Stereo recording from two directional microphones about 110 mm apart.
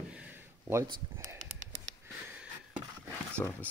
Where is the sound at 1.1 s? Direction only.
30° right (ahead or behind).